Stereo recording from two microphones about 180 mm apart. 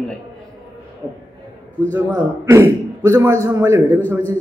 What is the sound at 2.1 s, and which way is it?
A man's voice, 15° right (ahead or behind).